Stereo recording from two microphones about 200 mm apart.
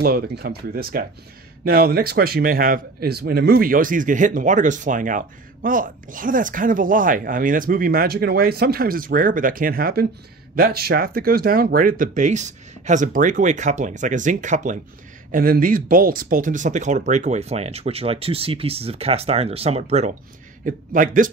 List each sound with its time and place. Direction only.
0.0 s speech: 50° right (ahead or behind)